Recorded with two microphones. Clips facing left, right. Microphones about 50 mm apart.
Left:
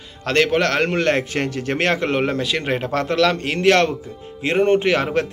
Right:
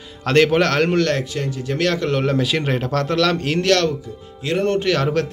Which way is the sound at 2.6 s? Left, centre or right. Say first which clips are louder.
Even; centre.